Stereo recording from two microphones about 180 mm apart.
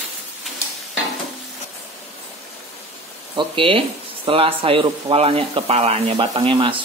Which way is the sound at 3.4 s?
30° right (ahead or behind).